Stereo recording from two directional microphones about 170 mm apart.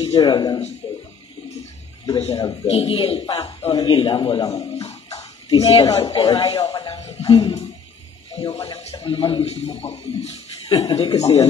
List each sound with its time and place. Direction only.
0.0 s speech: 30° left (ahead or behind)
0.8 s a sound: 30° left (ahead or behind)
2.1 s a man's voice: 35° left (ahead or behind)
6.7 s speech: 25° left (ahead or behind)
7.0 s a man's voice: 40° left (ahead or behind)